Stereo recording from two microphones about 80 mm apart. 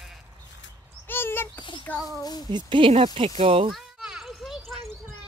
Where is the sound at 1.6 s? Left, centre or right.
Left.